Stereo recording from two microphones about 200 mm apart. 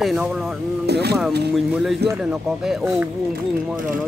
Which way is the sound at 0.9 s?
55° right (ahead or behind).